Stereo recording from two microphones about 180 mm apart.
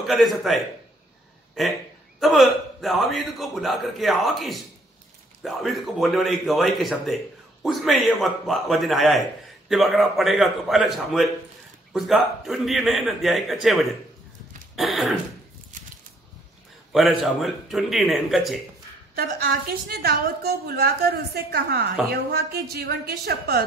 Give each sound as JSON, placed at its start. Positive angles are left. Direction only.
{"t": 0.0, "sound": "a man's voice", "side_deg": 0}
{"t": 2.1, "sound": "a man's voice", "side_deg": 0}
{"t": 14.8, "sound": "a man's voice", "side_deg": 0}
{"t": 16.9, "sound": "a man's voice", "side_deg": 0}
{"t": 19.1, "sound": "a woman's voice", "side_deg": -60}